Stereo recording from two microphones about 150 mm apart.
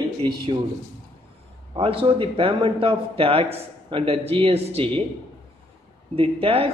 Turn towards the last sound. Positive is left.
turn(degrees=-40)  # may be behind; listen again after turning